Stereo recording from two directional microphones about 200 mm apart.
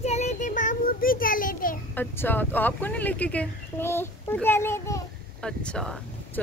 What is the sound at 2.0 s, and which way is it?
Speech, 10° left (ahead or behind).